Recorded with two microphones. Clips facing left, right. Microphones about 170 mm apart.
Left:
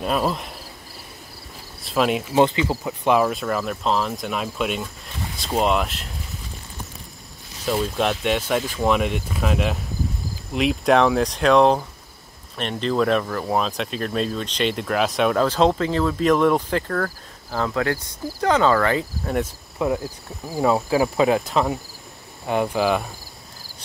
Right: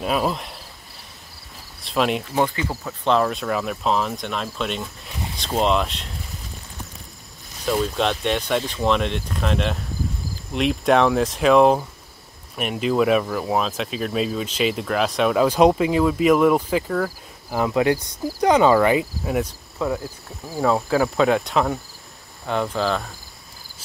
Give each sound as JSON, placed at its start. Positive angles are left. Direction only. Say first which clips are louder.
{"t": 0.0, "sound": "speech", "louder": "even", "side_deg": 0}
{"t": 1.8, "sound": "speech", "louder": "left 1 dB", "side_deg": 0}
{"t": 2.3, "sound": "speech", "louder": "left 4 dB", "side_deg": 20}
{"t": 7.6, "sound": "speech", "louder": "even", "side_deg": 5}
{"t": 15.4, "sound": "speech", "louder": "right 3 dB", "side_deg": -15}
{"t": 19.8, "sound": "speech", "louder": "left 2 dB", "side_deg": 15}